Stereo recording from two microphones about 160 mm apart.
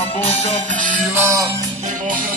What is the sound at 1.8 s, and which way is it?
Music, 60° right (ahead or behind).